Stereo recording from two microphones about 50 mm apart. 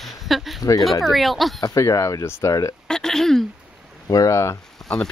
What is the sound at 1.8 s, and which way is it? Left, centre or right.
Speech, left.